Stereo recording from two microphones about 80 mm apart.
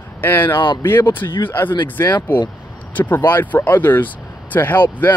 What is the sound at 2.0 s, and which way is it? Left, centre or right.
Speech, left.